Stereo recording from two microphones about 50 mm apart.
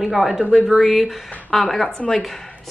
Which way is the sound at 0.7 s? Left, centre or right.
Centre.